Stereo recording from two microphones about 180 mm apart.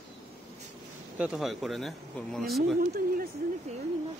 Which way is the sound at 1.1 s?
5° right (ahead or behind).